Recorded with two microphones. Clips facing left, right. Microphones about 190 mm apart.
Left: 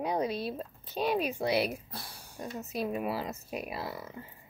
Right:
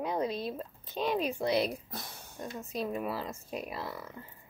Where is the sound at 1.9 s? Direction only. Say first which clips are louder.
Right 1 dB; 20° right (ahead or behind).